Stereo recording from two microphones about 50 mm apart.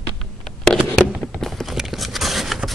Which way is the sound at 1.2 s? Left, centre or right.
Centre.